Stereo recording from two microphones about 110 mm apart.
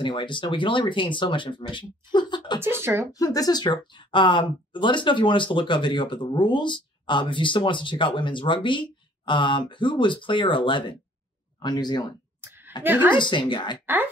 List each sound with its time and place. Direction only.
0.0 s speech: 45° left (ahead or behind)
2.6 s speech: 20° right (ahead or behind)
3.1 s speech: 35° left (ahead or behind)
12.4 s a sound: 20° right (ahead or behind)
12.8 s a woman's voice: 20° right (ahead or behind)
13.1 s speech: 45° left (ahead or behind)